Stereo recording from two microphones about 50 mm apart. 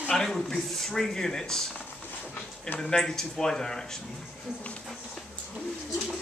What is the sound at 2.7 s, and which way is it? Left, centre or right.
Speech, centre.